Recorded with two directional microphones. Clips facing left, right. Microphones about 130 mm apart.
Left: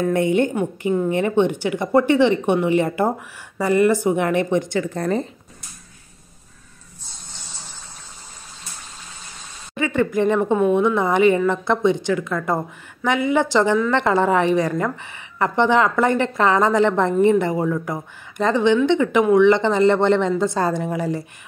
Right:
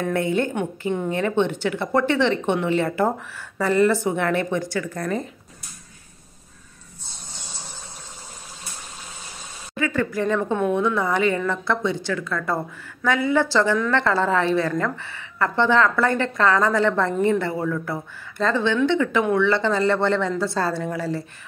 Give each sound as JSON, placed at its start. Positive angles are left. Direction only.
{"t": 0.1, "sound": "a woman's voice", "side_deg": 20}
{"t": 9.8, "sound": "a woman's voice", "side_deg": 20}